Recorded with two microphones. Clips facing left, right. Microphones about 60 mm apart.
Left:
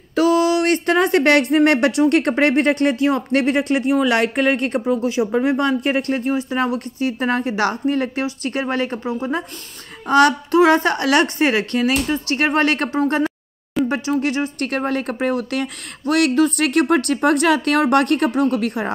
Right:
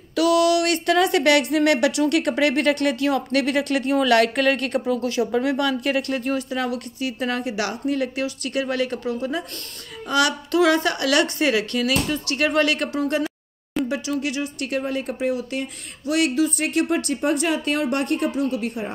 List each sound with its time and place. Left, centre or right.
0.1 s speech: left